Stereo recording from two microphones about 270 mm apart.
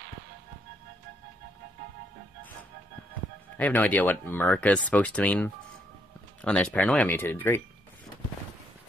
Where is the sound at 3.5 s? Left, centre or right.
Centre.